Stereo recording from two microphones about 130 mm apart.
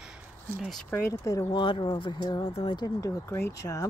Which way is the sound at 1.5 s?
40° left (ahead or behind).